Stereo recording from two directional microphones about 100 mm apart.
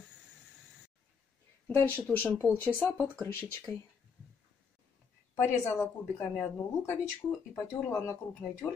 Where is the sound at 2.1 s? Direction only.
15° left (ahead or behind).